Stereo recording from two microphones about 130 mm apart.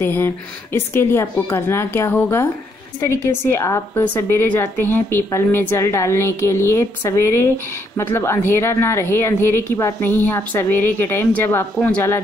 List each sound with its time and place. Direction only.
0.0 s a woman's voice: 15° left (ahead or behind)